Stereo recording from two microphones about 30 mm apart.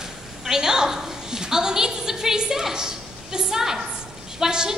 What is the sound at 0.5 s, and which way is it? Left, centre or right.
A woman's voice, centre.